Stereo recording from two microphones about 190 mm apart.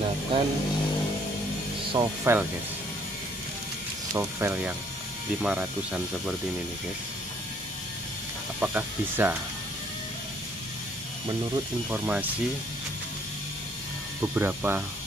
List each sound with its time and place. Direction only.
0.3 s speech: 30° right (ahead or behind)
2.0 s speech: 15° right (ahead or behind)
4.1 s speech: 15° right (ahead or behind)
8.5 s speech: 10° right (ahead or behind)
11.9 s speech: 10° right (ahead or behind)
14.3 s speech: 10° right (ahead or behind)